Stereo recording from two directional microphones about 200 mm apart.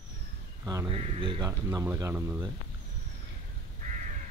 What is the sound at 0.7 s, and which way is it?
Speech, 20° right (ahead or behind).